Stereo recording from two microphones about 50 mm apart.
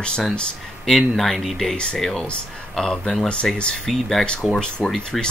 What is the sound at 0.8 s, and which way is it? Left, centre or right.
Speech, centre.